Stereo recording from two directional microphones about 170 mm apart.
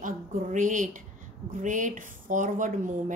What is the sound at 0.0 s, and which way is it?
Speech, 50° right (ahead or behind).